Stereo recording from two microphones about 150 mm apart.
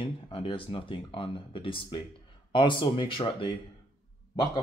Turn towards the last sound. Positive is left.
turn(degrees=30)  # may be behind; listen again after turning